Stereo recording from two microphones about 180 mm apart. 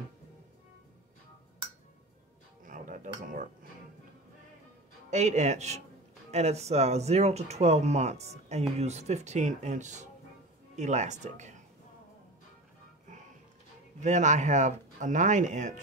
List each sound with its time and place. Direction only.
2.6 s music: 50° right (ahead or behind)
5.1 s speech: 40° right (ahead or behind)
14.0 s speech: 40° right (ahead or behind)